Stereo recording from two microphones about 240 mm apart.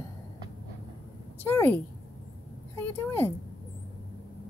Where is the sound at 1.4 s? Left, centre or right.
Centre.